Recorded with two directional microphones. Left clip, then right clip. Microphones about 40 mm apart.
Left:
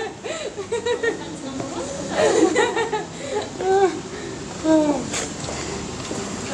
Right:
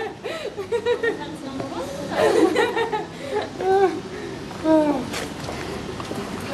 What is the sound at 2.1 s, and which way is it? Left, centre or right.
Chuckle, centre.